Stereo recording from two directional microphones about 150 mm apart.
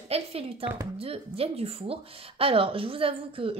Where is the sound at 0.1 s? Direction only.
40° right (ahead or behind).